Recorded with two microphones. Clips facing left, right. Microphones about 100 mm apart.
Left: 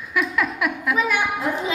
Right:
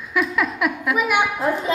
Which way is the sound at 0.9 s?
15° right (ahead or behind).